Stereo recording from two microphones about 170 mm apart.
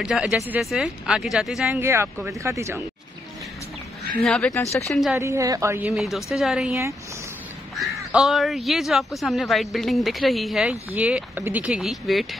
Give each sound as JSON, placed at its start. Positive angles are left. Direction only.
{"t": 0.0, "sound": "speech", "side_deg": -5}
{"t": 1.7, "sound": "a woman's voice", "side_deg": -15}
{"t": 4.2, "sound": "speech", "side_deg": 5}
{"t": 5.1, "sound": "a woman's voice", "side_deg": -15}
{"t": 5.9, "sound": "speech", "side_deg": 0}
{"t": 6.7, "sound": "a woman's voice", "side_deg": -15}
{"t": 7.7, "sound": "speech", "side_deg": 0}